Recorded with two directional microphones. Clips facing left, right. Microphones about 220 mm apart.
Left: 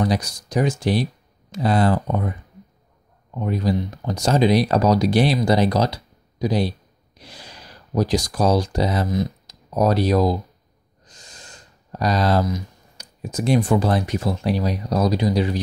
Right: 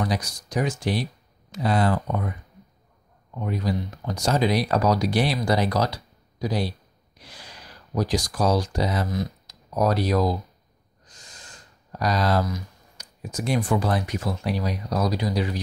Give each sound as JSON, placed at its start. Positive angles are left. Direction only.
{"t": 0.0, "sound": "speech", "side_deg": 25}
{"t": 3.3, "sound": "speech", "side_deg": 30}
{"t": 7.2, "sound": "gasp", "side_deg": 30}
{"t": 7.9, "sound": "speech", "side_deg": 30}
{"t": 11.9, "sound": "speech", "side_deg": 25}